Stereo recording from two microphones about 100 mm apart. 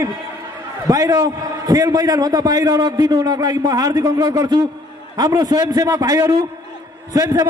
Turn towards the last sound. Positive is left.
turn(degrees=-35)  # may be behind; listen again after turning